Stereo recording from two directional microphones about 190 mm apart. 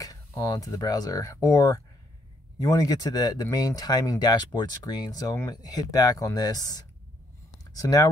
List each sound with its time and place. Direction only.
0.0 s speech: 20° left (ahead or behind)